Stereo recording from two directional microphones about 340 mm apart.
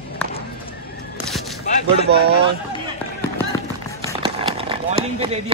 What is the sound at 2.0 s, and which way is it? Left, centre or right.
Speech, right.